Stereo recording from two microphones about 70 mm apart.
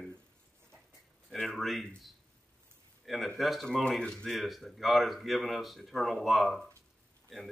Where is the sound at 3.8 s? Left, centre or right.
Centre.